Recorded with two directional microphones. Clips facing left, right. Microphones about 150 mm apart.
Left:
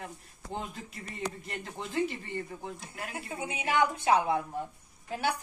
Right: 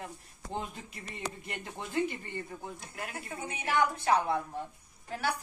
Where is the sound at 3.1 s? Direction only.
10° left (ahead or behind).